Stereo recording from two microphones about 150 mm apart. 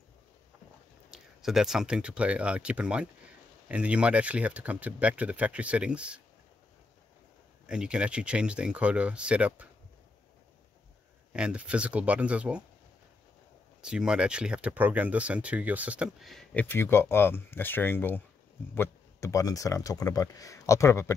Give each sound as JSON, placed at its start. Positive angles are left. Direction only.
{"t": 1.1, "sound": "speech", "side_deg": -5}
{"t": 7.6, "sound": "speech", "side_deg": -5}
{"t": 11.3, "sound": "speech", "side_deg": -5}
{"t": 13.7, "sound": "speech", "side_deg": -5}
{"t": 16.6, "sound": "speech", "side_deg": 15}